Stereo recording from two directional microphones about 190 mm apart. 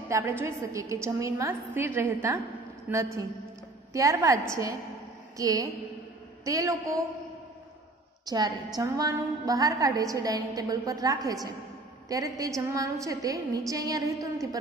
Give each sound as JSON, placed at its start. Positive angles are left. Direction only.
{"t": 0.1, "sound": "a woman's voice", "side_deg": -15}
{"t": 5.4, "sound": "a woman's voice", "side_deg": -20}
{"t": 8.3, "sound": "a woman's voice", "side_deg": -20}